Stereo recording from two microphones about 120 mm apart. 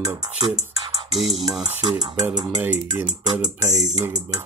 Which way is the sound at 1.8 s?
35° right (ahead or behind).